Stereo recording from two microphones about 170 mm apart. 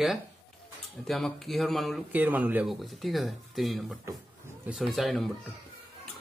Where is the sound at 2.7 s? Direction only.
Centre (ahead or behind).